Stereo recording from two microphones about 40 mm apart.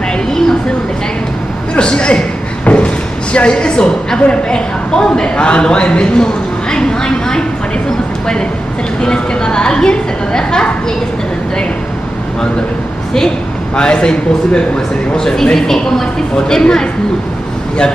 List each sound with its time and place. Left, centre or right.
1.8 s a sound: left
3.3 s a man's voice: left
9.0 s a woman's voice: left
13.7 s a woman's voice: left